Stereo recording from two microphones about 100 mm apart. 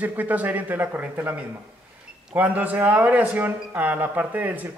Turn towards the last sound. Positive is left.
turn(degrees=-15)  # may be behind; listen again after turning